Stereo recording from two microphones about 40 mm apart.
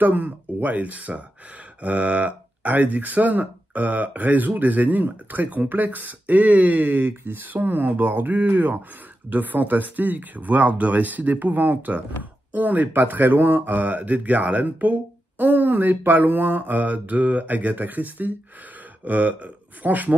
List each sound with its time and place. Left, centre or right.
0.0 s speech: right